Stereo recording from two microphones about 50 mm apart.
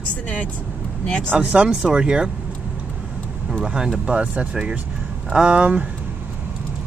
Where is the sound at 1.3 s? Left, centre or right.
Right.